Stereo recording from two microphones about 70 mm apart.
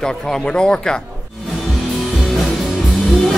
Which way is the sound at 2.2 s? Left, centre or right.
Centre.